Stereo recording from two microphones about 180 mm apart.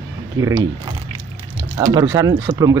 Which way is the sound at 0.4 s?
15° right (ahead or behind).